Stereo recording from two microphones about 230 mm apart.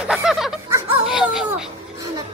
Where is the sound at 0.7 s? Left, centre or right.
Centre.